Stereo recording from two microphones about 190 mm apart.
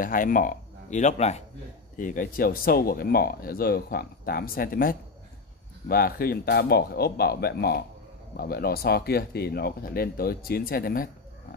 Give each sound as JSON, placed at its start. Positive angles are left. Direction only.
{"t": 0.0, "sound": "speech", "side_deg": 45}